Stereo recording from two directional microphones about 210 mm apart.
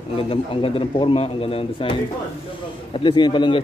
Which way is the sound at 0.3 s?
25° left (ahead or behind).